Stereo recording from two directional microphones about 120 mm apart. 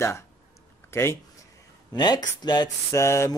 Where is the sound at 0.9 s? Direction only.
20° left (ahead or behind).